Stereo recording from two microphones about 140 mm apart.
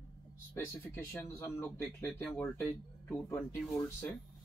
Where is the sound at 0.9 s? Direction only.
20° left (ahead or behind).